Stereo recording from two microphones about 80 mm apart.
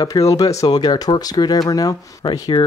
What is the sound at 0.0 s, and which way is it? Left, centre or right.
Speech, left.